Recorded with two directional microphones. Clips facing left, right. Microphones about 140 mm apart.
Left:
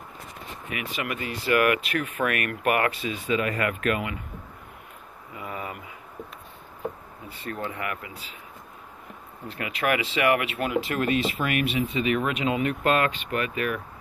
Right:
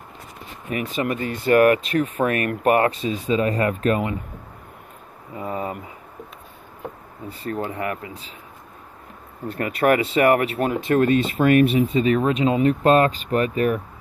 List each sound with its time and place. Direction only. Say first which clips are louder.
0.7 s speech: right 8 dB; 35° right (ahead or behind)
5.3 s speech: right 7 dB; 35° right (ahead or behind)
7.4 s speech: right 5 dB; 35° right (ahead or behind)
9.5 s speech: right 7 dB; 40° right (ahead or behind)